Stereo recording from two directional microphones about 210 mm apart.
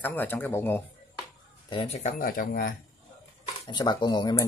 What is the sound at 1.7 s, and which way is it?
Speech, 25° left (ahead or behind).